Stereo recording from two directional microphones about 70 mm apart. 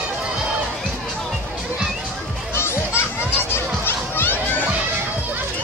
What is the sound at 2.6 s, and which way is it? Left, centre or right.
Music, left.